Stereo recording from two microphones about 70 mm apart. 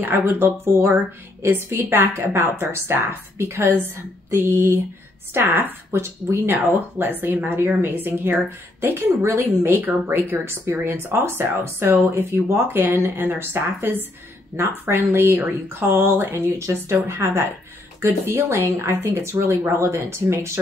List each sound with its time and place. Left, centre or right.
0.0 s a woman's voice: right
9.8 s speech: right